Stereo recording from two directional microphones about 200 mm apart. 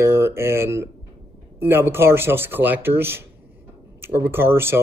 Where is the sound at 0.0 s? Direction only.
15° right (ahead or behind).